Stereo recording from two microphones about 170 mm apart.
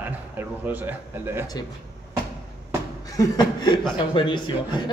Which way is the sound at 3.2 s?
25° left (ahead or behind).